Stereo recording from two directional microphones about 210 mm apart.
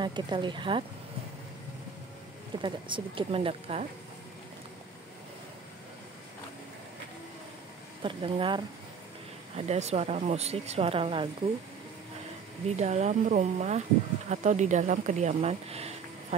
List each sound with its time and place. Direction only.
0.0 s speech: 20° right (ahead or behind)
2.6 s speech: 25° right (ahead or behind)
8.0 s speech: 25° right (ahead or behind)
12.6 s speech: 30° right (ahead or behind)